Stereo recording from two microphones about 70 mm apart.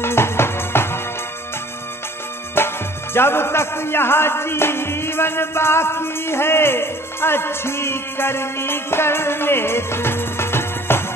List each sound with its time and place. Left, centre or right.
0.0 s music: left
2.5 s a man's voice: left